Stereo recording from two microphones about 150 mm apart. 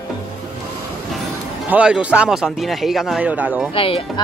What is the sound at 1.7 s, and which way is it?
Speech, 10° right (ahead or behind).